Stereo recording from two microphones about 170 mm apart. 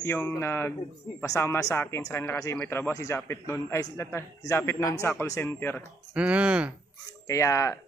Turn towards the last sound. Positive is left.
turn(degrees=15)  # may be behind; listen again after turning